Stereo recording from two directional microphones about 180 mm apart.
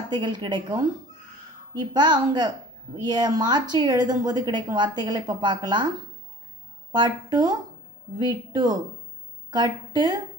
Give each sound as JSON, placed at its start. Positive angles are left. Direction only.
{"t": 0.1, "sound": "a woman's voice", "side_deg": -25}
{"t": 6.9, "sound": "a woman's voice", "side_deg": -20}